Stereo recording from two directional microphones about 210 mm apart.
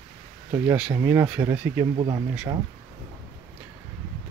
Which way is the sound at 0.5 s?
10° right (ahead or behind).